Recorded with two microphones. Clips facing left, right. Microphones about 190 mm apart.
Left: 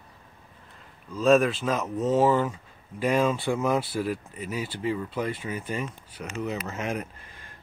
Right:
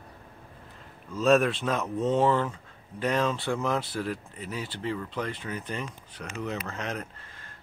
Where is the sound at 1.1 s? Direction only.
Centre (ahead or behind).